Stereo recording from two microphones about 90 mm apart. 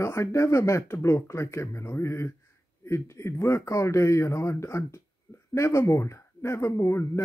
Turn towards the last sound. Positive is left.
turn(degrees=30)  # may be behind; listen again after turning